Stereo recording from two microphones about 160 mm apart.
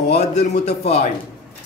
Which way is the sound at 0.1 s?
45° left (ahead or behind).